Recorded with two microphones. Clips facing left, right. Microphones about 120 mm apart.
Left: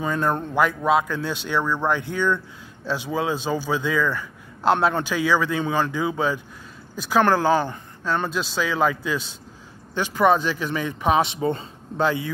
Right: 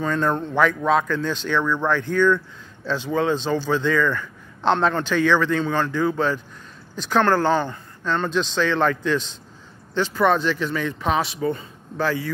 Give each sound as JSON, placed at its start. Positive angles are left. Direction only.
{"t": 0.0, "sound": "a man's voice", "side_deg": 10}